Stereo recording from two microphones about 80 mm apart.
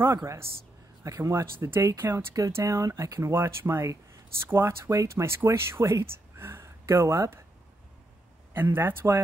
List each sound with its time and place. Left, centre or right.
0.0 s speech: right
8.5 s speech: right